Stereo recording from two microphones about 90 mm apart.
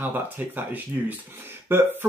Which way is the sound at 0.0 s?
20° right (ahead or behind).